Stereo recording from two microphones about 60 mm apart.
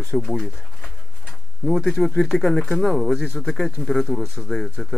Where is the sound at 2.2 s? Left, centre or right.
Centre.